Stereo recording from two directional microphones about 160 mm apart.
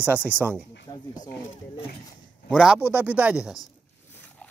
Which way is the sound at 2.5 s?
5° right (ahead or behind).